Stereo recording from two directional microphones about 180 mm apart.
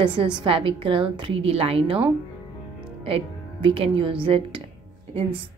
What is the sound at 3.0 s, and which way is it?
A woman's voice, 30° right (ahead or behind).